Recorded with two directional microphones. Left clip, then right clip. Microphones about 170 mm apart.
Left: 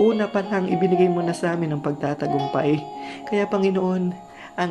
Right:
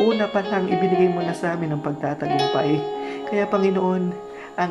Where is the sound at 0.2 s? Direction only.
30° left (ahead or behind).